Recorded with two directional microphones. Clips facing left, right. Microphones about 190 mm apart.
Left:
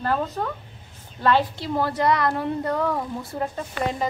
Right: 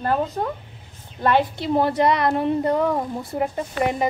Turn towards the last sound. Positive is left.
turn(degrees=-15)  # may be behind; listen again after turning